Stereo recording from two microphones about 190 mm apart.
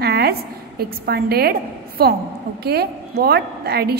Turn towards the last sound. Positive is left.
turn(degrees=-55)  # may be behind; listen again after turning